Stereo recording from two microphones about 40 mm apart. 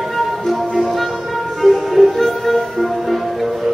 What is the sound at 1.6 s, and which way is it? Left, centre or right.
Music, centre.